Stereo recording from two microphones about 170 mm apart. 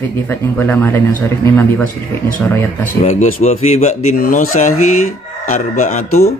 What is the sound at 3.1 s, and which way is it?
A man's voice, 40° left (ahead or behind).